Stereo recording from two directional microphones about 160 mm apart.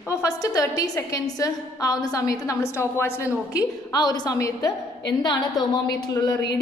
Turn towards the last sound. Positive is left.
turn(degrees=25)  # may be behind; listen again after turning